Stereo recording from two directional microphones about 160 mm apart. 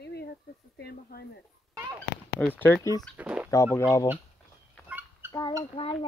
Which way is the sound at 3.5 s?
20° left (ahead or behind).